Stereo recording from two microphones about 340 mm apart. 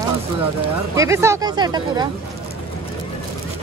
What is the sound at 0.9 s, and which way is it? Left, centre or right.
Speech, centre.